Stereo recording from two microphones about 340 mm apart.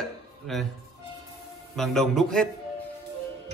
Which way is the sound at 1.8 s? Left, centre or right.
Centre.